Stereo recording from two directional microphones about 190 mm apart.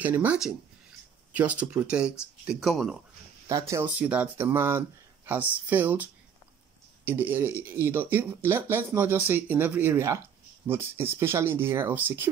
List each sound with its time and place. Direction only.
0.0 s speech: 10° right (ahead or behind)
3.4 s speech: 15° right (ahead or behind)
7.1 s speech: 10° right (ahead or behind)